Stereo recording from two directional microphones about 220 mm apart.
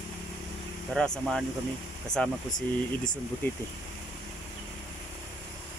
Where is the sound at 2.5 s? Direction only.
20° left (ahead or behind).